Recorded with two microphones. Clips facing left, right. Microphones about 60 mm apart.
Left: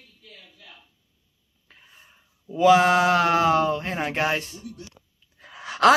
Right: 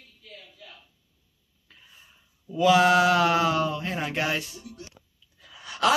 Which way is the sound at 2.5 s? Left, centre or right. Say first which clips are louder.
Left 2 dB; left.